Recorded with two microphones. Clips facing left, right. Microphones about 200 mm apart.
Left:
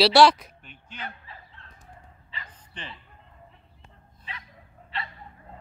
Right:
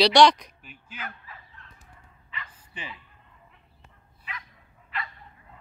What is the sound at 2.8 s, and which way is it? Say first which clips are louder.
Speech: right 1 dB; 10° right (ahead or behind).